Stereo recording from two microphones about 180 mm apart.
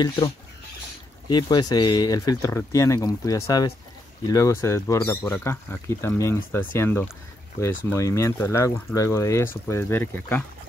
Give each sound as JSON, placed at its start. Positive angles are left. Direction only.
{"t": 1.3, "sound": "speech", "side_deg": 25}